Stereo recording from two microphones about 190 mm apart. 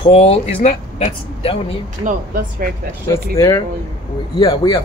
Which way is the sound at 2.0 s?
50° right (ahead or behind).